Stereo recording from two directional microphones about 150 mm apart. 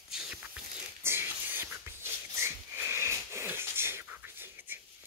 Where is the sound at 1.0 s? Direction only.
15° right (ahead or behind).